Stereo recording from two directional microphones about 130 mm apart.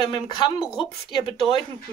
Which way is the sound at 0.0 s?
40° left (ahead or behind).